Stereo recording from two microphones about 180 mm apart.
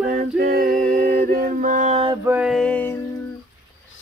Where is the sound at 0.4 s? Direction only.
55° right (ahead or behind); by 2.1 s 35° right (ahead or behind).